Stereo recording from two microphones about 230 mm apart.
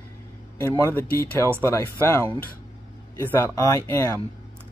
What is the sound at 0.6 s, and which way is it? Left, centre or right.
Speech, centre.